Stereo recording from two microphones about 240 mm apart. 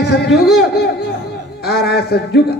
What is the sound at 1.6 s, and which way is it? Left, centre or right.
Speech, left.